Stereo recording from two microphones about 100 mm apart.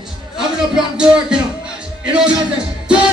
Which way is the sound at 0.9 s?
10° right (ahead or behind).